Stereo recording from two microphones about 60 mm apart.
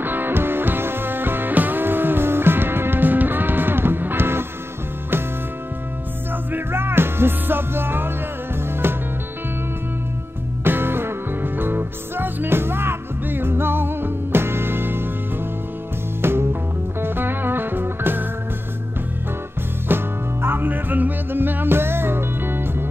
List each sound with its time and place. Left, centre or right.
0.0 s music: right
6.5 s music: right
10.6 s music: right
16.2 s music: right
19.9 s music: right